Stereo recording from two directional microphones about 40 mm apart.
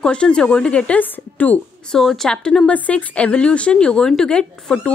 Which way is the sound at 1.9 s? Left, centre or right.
Centre.